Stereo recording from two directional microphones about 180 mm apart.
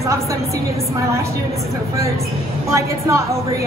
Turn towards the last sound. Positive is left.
turn(degrees=-15)  # may be behind; listen again after turning